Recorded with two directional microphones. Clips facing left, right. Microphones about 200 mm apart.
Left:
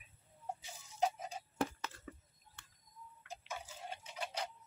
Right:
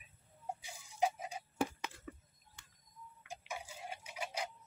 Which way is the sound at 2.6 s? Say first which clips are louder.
Left 2 dB; 10° right (ahead or behind).